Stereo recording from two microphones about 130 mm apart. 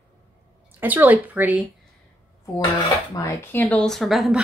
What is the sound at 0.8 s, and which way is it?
Speech, 15° right (ahead or behind).